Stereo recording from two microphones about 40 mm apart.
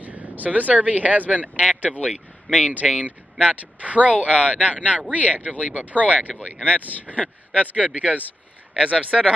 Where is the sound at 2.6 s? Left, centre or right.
Right.